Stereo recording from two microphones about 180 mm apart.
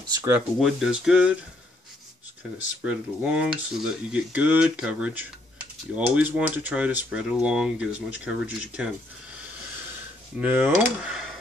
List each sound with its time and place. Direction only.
0.1 s speech: 15° right (ahead or behind)
0.6 s speech: centre (ahead or behind)
2.8 s speech: 5° right (ahead or behind)
10.4 s speech: 10° right (ahead or behind)